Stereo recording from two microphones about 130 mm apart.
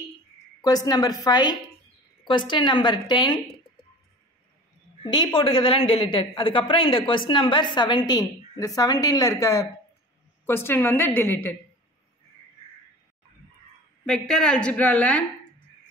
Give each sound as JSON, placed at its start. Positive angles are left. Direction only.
{"t": 0.6, "sound": "a woman's voice", "side_deg": 30}
{"t": 5.0, "sound": "a woman's voice", "side_deg": 35}
{"t": 14.0, "sound": "a woman's voice", "side_deg": 5}